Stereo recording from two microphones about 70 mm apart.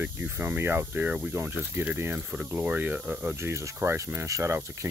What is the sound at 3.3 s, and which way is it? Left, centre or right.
Speech, right.